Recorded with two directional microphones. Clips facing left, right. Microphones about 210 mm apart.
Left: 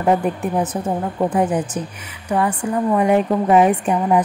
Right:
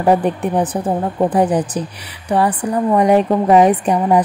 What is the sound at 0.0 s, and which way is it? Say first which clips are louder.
A woman's voice: right 3 dB; 35° right (ahead or behind).